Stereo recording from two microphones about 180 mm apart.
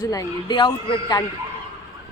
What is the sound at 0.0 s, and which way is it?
A man's voice, 20° left (ahead or behind).